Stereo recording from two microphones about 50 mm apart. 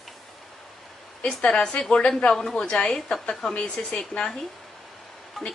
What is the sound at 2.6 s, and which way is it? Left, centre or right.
A woman's voice, centre.